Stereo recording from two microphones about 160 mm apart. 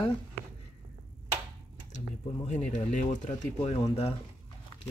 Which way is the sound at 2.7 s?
50° left (ahead or behind).